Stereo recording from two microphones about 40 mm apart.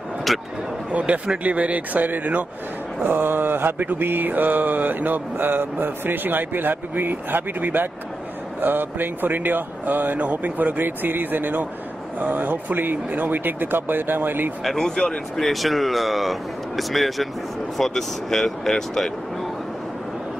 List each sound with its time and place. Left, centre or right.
0.3 s speech: centre
0.9 s speech: right
3.0 s mantra: right
10.2 s speech: right
14.6 s speech: centre
14.9 s speech: centre
15.3 s speech: centre